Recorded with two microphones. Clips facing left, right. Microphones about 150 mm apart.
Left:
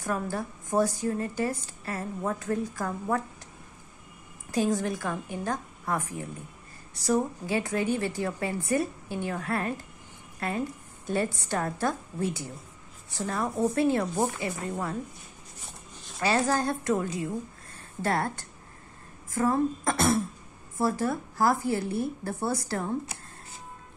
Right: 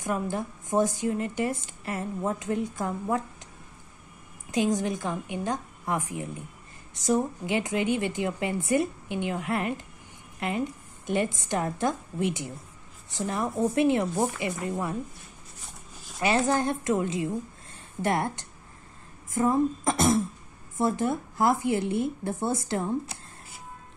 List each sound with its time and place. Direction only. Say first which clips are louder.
0.0 s a woman's voice: right 1 dB; 20° right (ahead or behind)
4.5 s a woman's voice: right 1 dB; 20° right (ahead or behind)
11.1 s a woman's voice: right 1 dB; 20° right (ahead or behind)
16.2 s a woman's voice: right 1 dB; 20° right (ahead or behind)